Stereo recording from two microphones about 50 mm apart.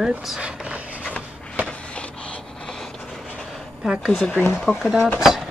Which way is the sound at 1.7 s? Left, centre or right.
Left.